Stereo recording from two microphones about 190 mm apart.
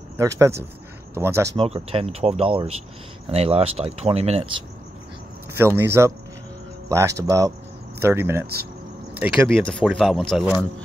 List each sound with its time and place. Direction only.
0.2 s speech: 15° right (ahead or behind)
1.6 s speech: 30° right (ahead or behind)
5.6 s speech: 15° right (ahead or behind)
9.5 s speech: 5° left (ahead or behind)